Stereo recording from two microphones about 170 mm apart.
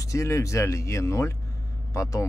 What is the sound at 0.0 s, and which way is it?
Speech, 20° left (ahead or behind).